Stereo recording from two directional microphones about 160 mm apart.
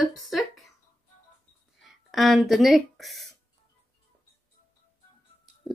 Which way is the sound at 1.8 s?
Centre (ahead or behind).